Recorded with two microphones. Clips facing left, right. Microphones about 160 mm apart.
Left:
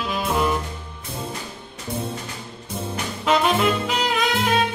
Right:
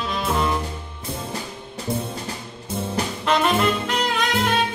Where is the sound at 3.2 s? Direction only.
Centre (ahead or behind).